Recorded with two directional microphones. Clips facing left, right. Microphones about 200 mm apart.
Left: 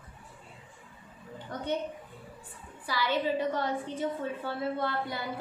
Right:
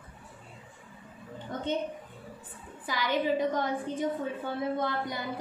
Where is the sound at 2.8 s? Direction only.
15° right (ahead or behind).